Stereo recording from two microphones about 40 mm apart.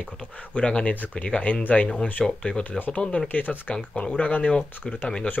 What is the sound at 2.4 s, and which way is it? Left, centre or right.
Speech, left.